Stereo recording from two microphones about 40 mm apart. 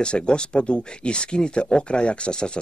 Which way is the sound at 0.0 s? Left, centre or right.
Left.